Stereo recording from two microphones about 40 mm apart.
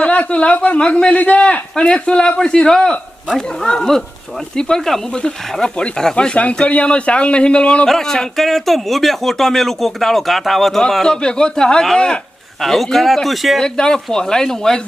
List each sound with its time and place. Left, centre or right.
0.0 s a woman's voice: left
0.7 s speech: left
1.1 s speech: left
1.4 s speech: left
6.1 s speech: left
7.8 s speech: centre
11.1 s speech: left
12.5 s speech: centre
13.6 s speech: centre